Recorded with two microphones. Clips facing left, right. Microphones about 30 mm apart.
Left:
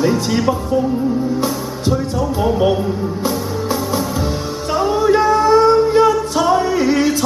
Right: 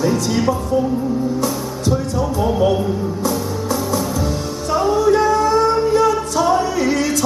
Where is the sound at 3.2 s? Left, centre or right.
Left.